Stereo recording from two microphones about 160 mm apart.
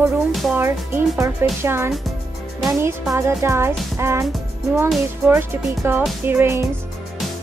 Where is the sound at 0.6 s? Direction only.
15° right (ahead or behind).